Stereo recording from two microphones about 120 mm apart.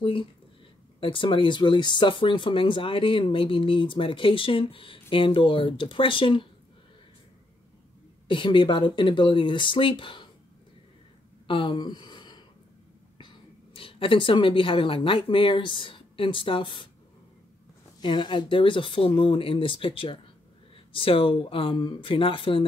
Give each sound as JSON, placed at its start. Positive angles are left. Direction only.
{"t": 0.0, "sound": "speech", "side_deg": 45}
{"t": 8.3, "sound": "speech", "side_deg": 45}
{"t": 11.4, "sound": "a sound", "side_deg": 45}
{"t": 13.7, "sound": "speech", "side_deg": 45}
{"t": 18.0, "sound": "speech", "side_deg": 40}